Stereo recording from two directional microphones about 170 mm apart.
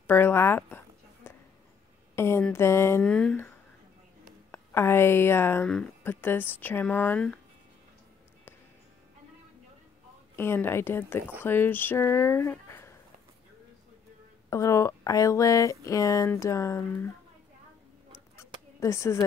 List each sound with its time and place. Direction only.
0.0 s a sound: 15° left (ahead or behind)
2.1 s a woman's voice: 15° left (ahead or behind)
10.3 s a woman's voice: 15° left (ahead or behind)
14.5 s a woman's voice: 20° left (ahead or behind)
18.8 s a woman's voice: 15° left (ahead or behind)